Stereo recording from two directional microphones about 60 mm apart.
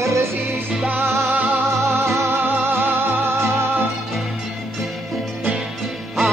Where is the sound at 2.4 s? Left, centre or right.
Right.